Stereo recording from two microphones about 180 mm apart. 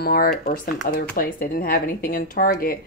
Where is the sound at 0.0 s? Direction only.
60° left (ahead or behind).